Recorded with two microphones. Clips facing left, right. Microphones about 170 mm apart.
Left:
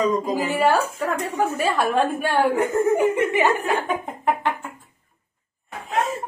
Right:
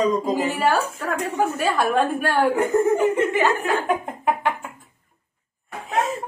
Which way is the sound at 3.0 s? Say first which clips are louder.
Even; 15° left (ahead or behind).